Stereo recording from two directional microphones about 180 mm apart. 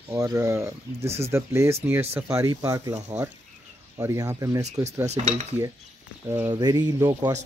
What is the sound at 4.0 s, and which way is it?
Speech, 20° right (ahead or behind).